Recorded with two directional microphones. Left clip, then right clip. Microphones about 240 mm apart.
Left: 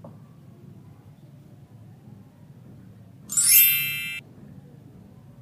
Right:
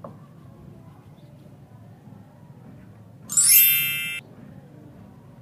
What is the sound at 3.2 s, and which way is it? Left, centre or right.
Ding, centre.